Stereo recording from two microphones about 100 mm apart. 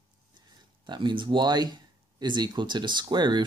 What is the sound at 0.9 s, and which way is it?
Speech, 50° right (ahead or behind).